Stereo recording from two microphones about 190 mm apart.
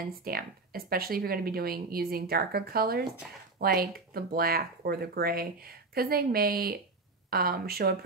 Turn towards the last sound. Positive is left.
turn(degrees=-55)  # may be behind; listen again after turning